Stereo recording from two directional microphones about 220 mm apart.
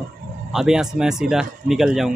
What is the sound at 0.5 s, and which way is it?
Speech, 5° right (ahead or behind).